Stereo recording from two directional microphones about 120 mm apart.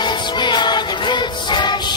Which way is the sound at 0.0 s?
40° left (ahead or behind).